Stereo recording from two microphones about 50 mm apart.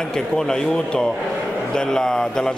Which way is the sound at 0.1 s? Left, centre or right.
Centre.